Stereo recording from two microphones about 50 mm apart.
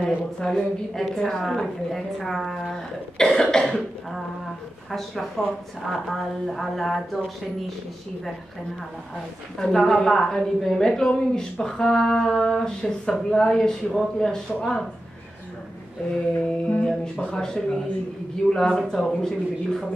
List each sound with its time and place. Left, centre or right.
0.0 s a woman's voice: centre
5.4 s a woman's voice: centre
9.6 s a woman's voice: centre
16.4 s a woman's voice: centre
18.7 s a woman's voice: centre